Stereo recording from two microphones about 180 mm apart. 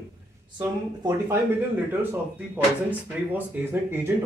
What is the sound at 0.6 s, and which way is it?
Speech, 20° right (ahead or behind).